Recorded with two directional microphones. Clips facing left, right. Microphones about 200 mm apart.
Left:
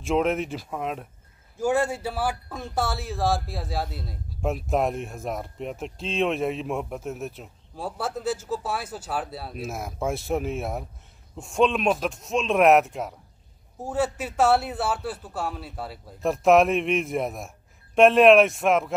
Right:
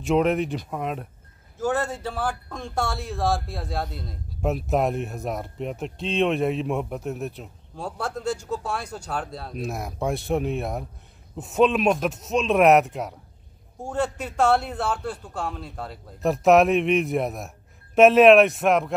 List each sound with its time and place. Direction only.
0.0 s speech: centre (ahead or behind)
1.6 s speech: 10° left (ahead or behind)